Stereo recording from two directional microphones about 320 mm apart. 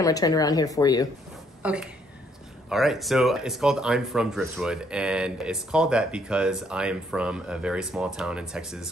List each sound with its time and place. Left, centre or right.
0.0 s speech: centre
1.6 s speech: centre